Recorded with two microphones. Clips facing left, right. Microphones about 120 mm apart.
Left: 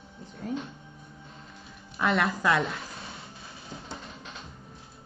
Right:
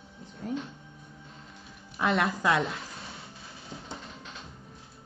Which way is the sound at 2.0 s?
20° right (ahead or behind).